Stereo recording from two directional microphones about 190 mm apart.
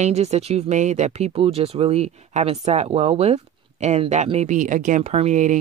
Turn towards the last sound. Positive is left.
turn(degrees=-40)  # may be behind; listen again after turning